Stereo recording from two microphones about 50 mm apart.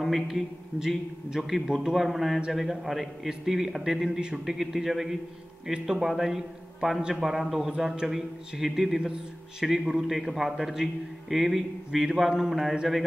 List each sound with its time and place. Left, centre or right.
0.0 s a man's voice: centre
4.2 s a man's voice: centre
4.6 s a man's voice: centre
8.1 s a man's voice: centre